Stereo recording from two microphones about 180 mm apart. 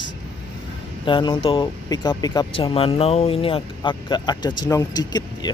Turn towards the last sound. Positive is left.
turn(degrees=20)  # may be behind; listen again after turning